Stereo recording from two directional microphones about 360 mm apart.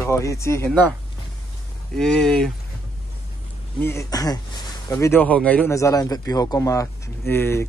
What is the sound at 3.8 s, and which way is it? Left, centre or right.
Speech, centre.